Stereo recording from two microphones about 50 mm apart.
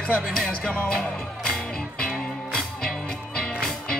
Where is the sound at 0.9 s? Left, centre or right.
Centre.